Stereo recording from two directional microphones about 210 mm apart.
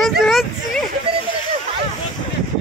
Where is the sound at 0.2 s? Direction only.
Centre (ahead or behind).